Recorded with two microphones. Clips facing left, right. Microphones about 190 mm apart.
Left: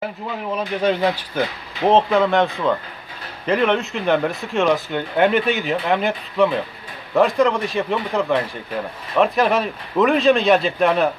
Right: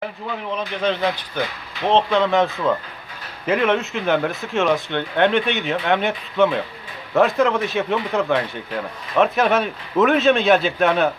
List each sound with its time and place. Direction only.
0.6 s a man's voice: 10° left (ahead or behind)